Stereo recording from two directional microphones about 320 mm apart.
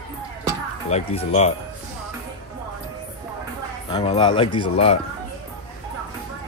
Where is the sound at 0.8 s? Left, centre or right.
Centre.